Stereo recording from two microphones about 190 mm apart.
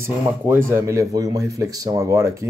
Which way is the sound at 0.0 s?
10° right (ahead or behind).